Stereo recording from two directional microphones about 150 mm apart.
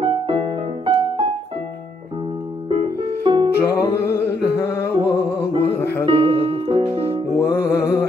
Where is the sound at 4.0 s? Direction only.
90° left.